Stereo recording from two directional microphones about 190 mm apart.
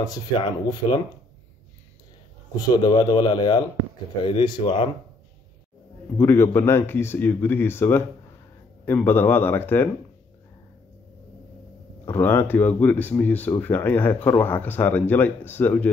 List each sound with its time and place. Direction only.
0.0 s speech: 20° left (ahead or behind)
2.5 s speech: 20° left (ahead or behind)
6.1 s speech: 10° left (ahead or behind)
12.1 s speech: 10° left (ahead or behind)